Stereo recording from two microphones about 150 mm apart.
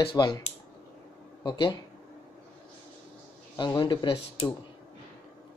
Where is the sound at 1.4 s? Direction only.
30° left (ahead or behind).